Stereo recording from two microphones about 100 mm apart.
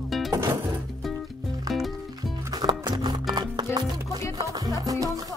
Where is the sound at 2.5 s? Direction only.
45° right (ahead or behind).